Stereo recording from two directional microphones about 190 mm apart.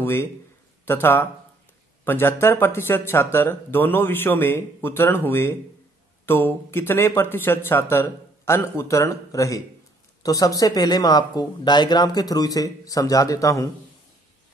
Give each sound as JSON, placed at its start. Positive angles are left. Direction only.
{"t": 0.0, "sound": "speech", "side_deg": 10}